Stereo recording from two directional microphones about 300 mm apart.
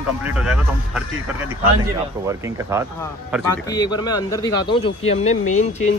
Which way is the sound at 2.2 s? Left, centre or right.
Centre.